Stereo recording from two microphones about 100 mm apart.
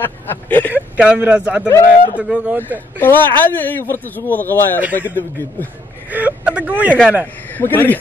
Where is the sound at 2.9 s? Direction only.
20° left (ahead or behind).